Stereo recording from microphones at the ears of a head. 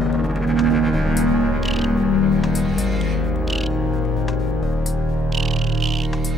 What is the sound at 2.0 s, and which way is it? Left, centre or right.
Music, left.